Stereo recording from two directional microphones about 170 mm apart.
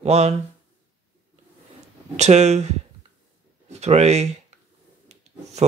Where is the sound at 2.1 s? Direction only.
40° right (ahead or behind).